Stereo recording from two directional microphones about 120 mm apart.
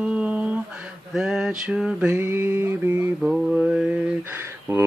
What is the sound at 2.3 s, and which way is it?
Mantra, 20° right (ahead or behind).